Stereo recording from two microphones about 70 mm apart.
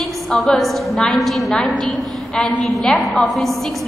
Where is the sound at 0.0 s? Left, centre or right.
Centre.